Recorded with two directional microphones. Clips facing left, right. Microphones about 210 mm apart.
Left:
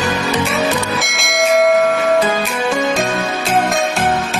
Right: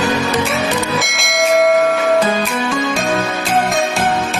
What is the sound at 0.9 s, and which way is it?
Church bell, centre (ahead or behind).